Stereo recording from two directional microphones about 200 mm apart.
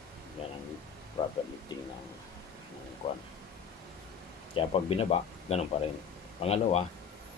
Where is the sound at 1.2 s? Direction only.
20° left (ahead or behind).